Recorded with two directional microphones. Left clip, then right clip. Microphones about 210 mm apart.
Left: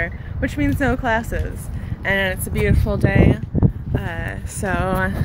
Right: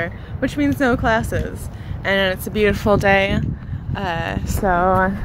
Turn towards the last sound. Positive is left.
turn(degrees=5)  # may be behind; listen again after turning